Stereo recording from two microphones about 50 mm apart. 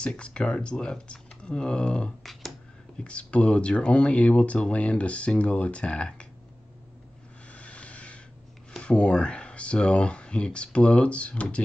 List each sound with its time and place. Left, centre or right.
0.0 s speech: centre
7.4 s vehicle: left
8.7 s speech: left